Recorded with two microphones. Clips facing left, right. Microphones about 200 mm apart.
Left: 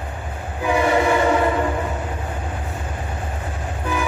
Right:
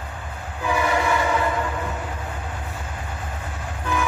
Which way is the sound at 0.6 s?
20° left (ahead or behind).